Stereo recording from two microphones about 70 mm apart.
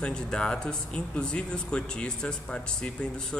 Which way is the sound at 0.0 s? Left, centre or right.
Centre.